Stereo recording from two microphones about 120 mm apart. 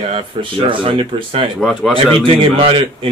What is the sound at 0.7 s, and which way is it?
A man's voice, 45° right (ahead or behind).